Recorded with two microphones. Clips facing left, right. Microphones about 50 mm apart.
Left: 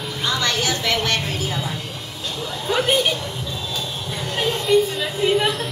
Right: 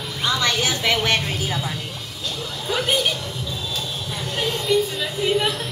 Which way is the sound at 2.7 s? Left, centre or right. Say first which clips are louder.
Left 3 dB; centre.